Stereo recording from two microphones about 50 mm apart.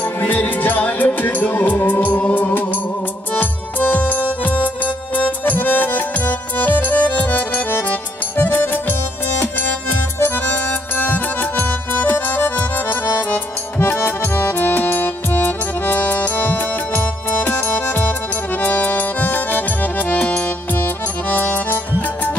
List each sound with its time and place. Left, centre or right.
0.0 s music: left